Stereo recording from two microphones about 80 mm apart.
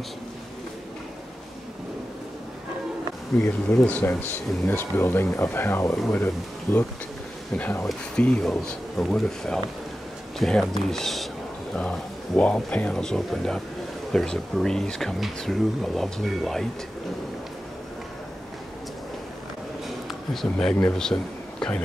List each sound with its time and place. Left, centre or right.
3.3 s speech: left
8.2 s speech: centre
21.0 s speech: centre